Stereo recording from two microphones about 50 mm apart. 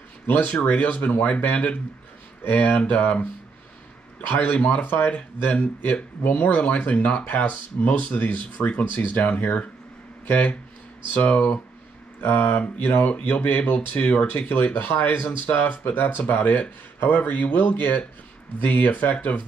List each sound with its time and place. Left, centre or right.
0.3 s speech: left
4.3 s speech: left
5.1 s speech: left
14.5 s speech: left
15.4 s speech: left